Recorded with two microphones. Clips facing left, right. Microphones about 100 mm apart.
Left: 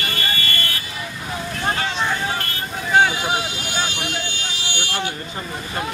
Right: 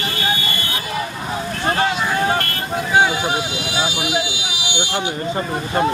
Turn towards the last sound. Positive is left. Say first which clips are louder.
# right 4 dB
turn(degrees=-20)  # may be behind; listen again after turning